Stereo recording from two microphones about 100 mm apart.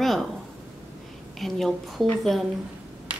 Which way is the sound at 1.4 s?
Centre (ahead or behind).